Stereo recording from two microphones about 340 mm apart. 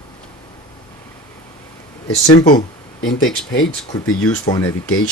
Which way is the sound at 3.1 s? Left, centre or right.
Left.